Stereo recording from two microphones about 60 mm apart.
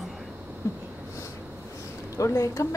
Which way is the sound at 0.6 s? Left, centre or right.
Left.